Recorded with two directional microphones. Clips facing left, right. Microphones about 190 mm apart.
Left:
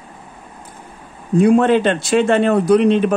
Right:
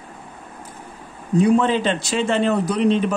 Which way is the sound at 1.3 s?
55° left (ahead or behind).